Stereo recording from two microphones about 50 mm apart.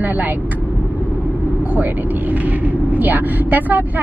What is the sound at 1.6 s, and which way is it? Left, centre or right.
A woman's voice, right.